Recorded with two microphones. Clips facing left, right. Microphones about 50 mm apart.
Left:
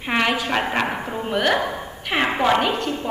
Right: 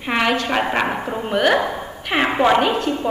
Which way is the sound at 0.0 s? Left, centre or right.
Centre.